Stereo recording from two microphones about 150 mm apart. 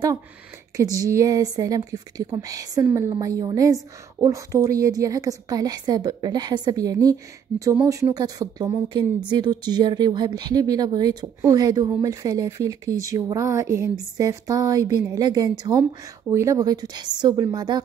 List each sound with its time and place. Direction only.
0.7 s speech: 20° right (ahead or behind)